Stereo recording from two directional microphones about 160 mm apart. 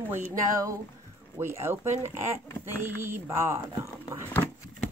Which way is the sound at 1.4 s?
15° right (ahead or behind).